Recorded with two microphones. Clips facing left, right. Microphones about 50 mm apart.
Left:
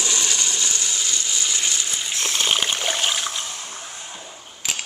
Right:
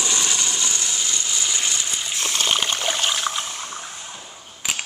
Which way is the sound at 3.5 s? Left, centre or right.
Right.